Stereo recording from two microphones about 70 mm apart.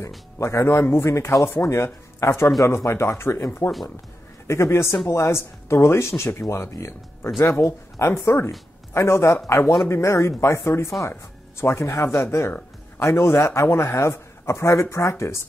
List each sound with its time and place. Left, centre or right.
0.4 s speech: left